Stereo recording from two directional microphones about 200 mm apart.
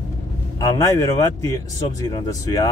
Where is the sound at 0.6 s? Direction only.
15° left (ahead or behind).